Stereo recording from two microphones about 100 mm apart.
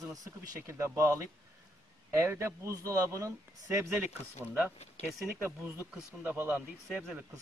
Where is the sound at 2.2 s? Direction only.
25° right (ahead or behind).